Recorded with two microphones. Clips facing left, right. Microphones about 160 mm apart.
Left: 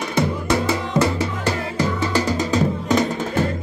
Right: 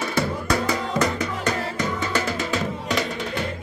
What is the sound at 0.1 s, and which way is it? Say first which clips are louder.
Music: left 5 dB; 20° left (ahead or behind).